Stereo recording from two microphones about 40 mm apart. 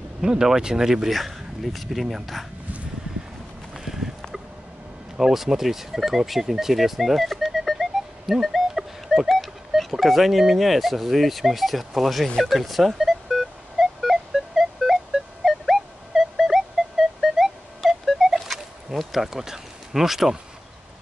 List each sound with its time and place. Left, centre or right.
0.2 s speech: centre
1.1 s speech: centre
3.7 s a sound: centre
5.1 s speech: centre
12.4 s telephone dialing: centre
15.4 s music: centre